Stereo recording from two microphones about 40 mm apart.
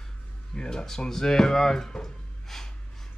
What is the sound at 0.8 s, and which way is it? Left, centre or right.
Speech, centre.